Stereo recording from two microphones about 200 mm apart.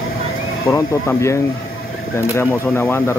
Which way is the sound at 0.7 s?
15° left (ahead or behind).